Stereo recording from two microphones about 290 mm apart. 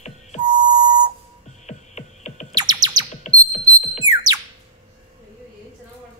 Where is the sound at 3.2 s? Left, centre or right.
Left.